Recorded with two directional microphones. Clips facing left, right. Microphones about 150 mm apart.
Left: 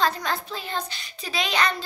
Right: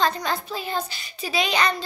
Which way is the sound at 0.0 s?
Centre (ahead or behind).